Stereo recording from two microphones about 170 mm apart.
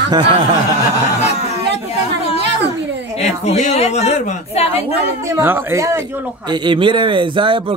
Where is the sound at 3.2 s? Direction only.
40° left (ahead or behind).